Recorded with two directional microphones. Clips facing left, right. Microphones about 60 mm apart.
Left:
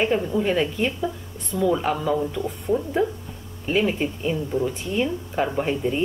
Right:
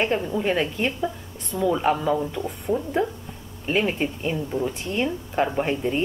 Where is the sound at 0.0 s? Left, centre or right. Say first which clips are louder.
Left 2 dB; centre.